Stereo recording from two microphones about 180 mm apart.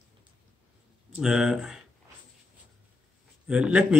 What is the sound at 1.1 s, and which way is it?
Speech, 5° right (ahead or behind).